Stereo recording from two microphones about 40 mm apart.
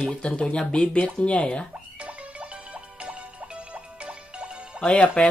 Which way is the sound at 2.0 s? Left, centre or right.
Right.